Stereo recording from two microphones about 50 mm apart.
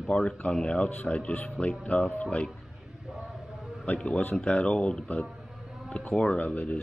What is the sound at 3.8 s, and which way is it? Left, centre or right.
Speech, left.